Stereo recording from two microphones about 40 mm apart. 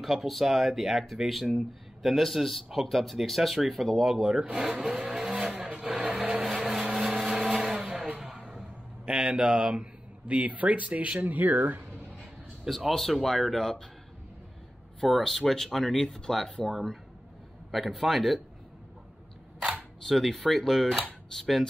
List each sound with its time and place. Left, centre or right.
0.0 s speech: centre
2.2 s speech: centre
4.3 s speech: centre
4.7 s vehicle: centre
5.7 s vehicle: right
6.1 s a sound: centre
7.5 s vehicle: centre
8.2 s a sound: centre
9.6 s speech: right
10.2 s speech: right
11.1 s speech: right
12.6 s speech: centre
15.0 s speech: centre
20.0 s speech: centre